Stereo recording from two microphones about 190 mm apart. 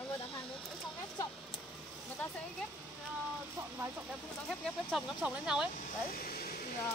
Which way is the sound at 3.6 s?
15° right (ahead or behind).